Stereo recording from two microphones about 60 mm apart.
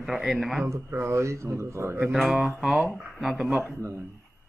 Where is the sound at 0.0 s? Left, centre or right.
Centre.